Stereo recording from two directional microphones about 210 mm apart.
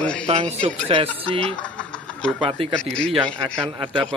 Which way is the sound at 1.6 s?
5° left (ahead or behind).